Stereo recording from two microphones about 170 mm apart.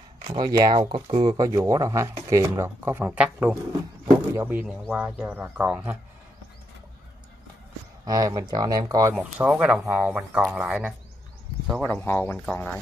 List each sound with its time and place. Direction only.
0.2 s speech: 25° right (ahead or behind); by 3.5 s 10° right (ahead or behind)
4.0 s wild animals: 15° right (ahead or behind)
4.9 s speech: 5° right (ahead or behind)
8.0 s speech: 20° right (ahead or behind)
9.1 s speech: 5° right (ahead or behind)
11.8 s speech: 10° left (ahead or behind)